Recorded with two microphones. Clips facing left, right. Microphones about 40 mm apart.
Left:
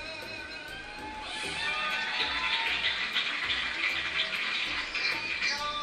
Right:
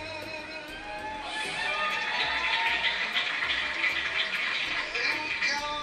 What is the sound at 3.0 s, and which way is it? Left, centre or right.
Music, centre.